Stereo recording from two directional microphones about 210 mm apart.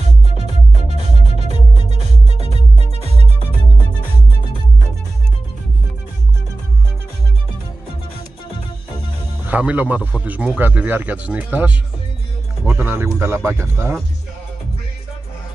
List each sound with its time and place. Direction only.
0.4 s music: 30° right (ahead or behind)
9.5 s speech: 5° right (ahead or behind)